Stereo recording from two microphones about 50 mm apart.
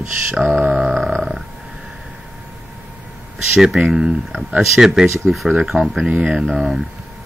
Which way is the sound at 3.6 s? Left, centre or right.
Centre.